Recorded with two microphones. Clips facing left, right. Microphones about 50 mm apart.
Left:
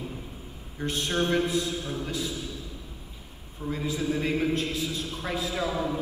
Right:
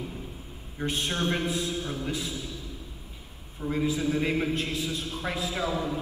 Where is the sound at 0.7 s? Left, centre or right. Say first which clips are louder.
Left 2 dB; centre.